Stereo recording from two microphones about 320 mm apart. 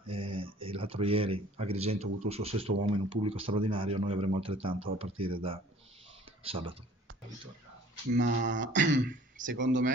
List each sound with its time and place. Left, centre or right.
0.0 s speech: centre
2.7 s speech: right
3.3 s a man's voice: centre
6.4 s a man's voice: centre
8.1 s speech: right